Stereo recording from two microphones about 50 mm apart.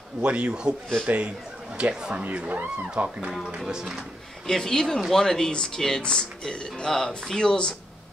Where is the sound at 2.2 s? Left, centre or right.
Right.